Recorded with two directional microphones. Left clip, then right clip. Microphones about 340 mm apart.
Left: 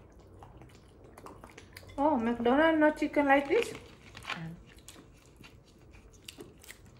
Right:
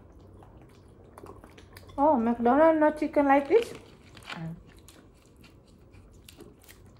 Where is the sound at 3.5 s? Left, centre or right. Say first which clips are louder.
Right 5 dB; centre.